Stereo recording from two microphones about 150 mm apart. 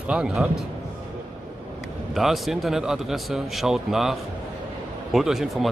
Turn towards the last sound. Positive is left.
turn(degrees=0)  # may be behind; listen again after turning